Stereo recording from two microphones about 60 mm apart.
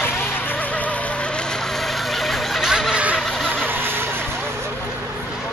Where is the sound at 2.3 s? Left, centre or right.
Centre.